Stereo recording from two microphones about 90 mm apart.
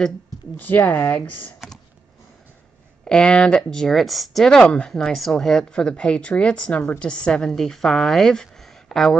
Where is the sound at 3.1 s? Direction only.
10° left (ahead or behind).